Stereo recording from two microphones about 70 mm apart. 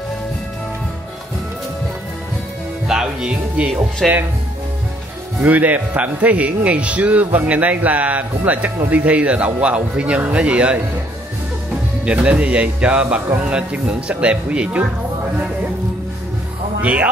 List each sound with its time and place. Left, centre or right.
2.9 s speech: centre
5.4 s a man's voice: right
12.0 s a man's voice: centre
16.8 s a man's voice: centre